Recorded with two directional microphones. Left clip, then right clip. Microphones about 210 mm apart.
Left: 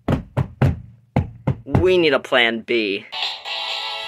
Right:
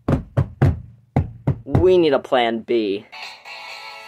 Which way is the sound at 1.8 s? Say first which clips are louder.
Right 1 dB; 10° right (ahead or behind).